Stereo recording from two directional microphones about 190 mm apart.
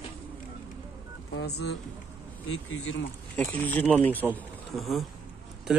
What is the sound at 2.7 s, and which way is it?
Speech, 90° left.